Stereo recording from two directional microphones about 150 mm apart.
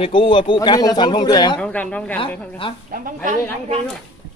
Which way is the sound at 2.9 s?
65° right (ahead or behind).